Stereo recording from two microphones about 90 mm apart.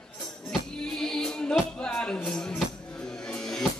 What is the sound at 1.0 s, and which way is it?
Music, 5° left (ahead or behind).